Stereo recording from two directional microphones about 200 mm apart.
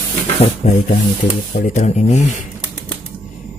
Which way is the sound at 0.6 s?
40° left (ahead or behind).